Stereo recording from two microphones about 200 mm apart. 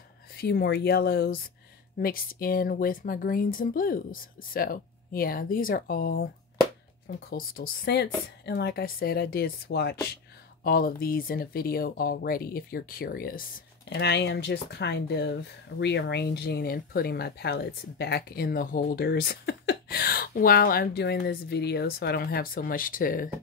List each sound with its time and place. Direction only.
0.4 s speech: 50° left (ahead or behind)
7.2 s speech: 45° left (ahead or behind)
13.8 s speech: 60° left (ahead or behind)